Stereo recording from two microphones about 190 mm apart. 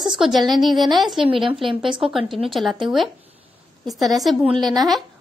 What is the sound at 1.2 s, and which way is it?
Speech, 30° right (ahead or behind).